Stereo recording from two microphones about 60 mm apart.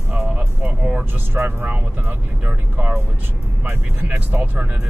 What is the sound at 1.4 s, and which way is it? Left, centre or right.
Speech, right.